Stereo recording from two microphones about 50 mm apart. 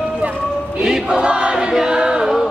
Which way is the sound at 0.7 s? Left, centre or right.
Centre.